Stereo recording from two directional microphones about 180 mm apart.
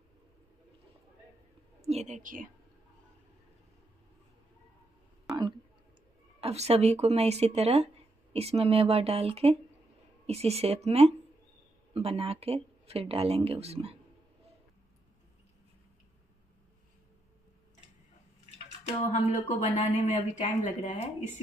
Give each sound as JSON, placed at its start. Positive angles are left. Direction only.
{"t": 1.8, "sound": "speech", "side_deg": -35}
{"t": 6.4, "sound": "speech", "side_deg": -35}
{"t": 19.1, "sound": "speech", "side_deg": 40}